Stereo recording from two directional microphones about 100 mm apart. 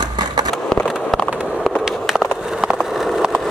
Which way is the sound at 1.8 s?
5° right (ahead or behind).